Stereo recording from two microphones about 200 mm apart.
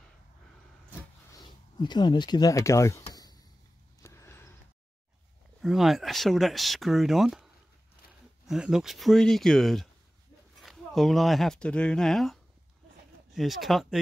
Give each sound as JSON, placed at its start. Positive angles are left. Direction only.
{"t": 1.4, "sound": "speech", "side_deg": 20}
{"t": 3.1, "sound": "a sound", "side_deg": 20}
{"t": 5.6, "sound": "speech", "side_deg": 0}
{"t": 8.5, "sound": "speech", "side_deg": -5}